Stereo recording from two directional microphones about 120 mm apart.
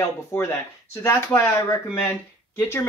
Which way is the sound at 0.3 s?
20° left (ahead or behind).